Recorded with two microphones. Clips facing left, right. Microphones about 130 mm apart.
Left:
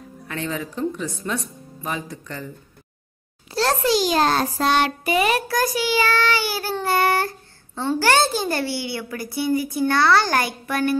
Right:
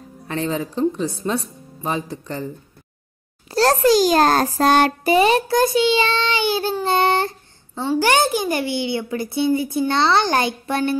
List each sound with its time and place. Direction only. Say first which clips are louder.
0.2 s a child's voice: right 5 dB; 30° right (ahead or behind)
5.1 s speech: right 5 dB; 30° right (ahead or behind)
6.8 s child singing: even; 20° right (ahead or behind)
8.0 s speech: right 1 dB; 15° right (ahead or behind)